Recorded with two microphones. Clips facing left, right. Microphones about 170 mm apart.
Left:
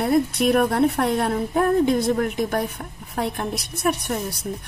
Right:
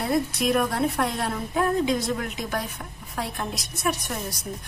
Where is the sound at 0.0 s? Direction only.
60° left (ahead or behind).